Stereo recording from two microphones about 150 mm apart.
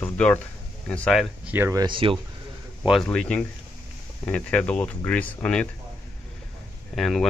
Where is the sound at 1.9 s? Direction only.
35° right (ahead or behind).